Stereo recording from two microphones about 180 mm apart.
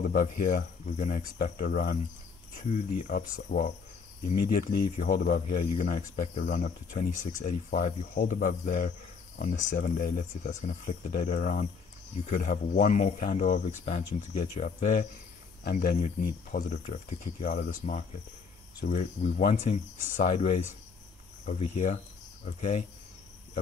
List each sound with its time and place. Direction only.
0.1 s speech: 50° left (ahead or behind)
15.6 s speech: 55° left (ahead or behind); by 22.8 s 40° left (ahead or behind)